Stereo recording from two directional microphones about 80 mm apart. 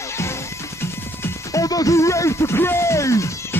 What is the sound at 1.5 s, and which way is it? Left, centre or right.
Music, left.